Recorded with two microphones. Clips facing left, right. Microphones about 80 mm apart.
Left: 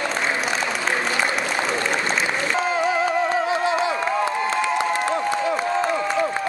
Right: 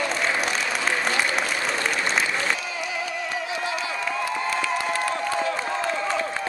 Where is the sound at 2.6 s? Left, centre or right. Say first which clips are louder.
Left 10 dB; left; by 6.4 s centre.